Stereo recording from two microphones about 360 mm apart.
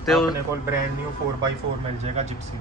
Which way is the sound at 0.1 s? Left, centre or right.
Centre.